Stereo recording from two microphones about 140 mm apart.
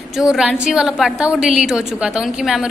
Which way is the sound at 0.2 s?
5° right (ahead or behind).